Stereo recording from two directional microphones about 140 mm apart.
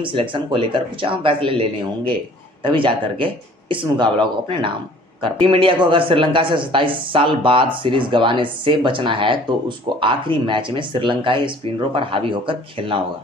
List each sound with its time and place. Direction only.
0.0 s speech: 40° right (ahead or behind)
2.6 s speech: 40° right (ahead or behind)